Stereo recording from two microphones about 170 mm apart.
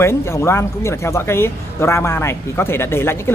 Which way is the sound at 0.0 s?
15° left (ahead or behind).